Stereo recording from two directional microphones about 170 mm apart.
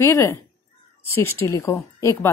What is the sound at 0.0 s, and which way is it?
A woman's voice, 15° left (ahead or behind).